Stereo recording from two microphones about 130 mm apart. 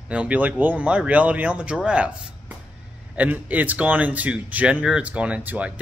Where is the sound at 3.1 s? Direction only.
10° right (ahead or behind).